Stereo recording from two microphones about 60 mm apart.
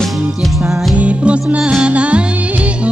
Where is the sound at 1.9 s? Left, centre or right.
Centre.